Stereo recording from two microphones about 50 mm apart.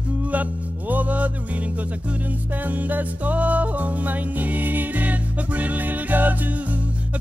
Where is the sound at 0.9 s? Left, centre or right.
Right.